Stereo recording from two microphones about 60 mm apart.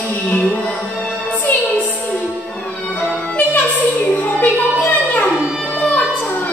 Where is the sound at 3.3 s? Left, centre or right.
Left.